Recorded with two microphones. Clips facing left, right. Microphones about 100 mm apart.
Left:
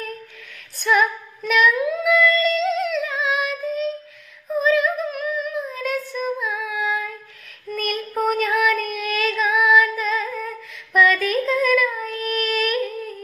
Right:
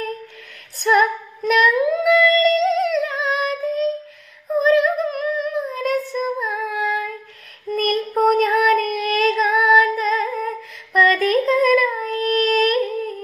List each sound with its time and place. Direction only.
0.8 s female singing: 45° right (ahead or behind)
2.0 s music: 50° right (ahead or behind)
4.6 s female singing: 45° right (ahead or behind)
7.7 s child singing: 45° right (ahead or behind)
8.0 s child singing: 25° right (ahead or behind)
8.5 s female singing: 45° right (ahead or behind)
11.0 s child singing: 45° right (ahead or behind)